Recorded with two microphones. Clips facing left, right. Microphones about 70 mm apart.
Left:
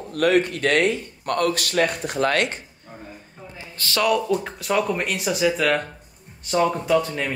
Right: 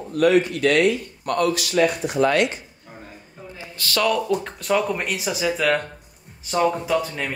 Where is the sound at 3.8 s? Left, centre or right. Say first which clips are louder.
Even; left.